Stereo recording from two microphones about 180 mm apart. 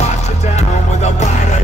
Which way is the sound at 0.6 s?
40° left (ahead or behind).